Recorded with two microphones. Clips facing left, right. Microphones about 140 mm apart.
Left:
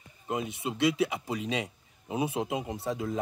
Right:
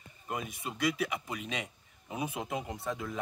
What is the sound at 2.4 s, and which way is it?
Speech, 15° left (ahead or behind).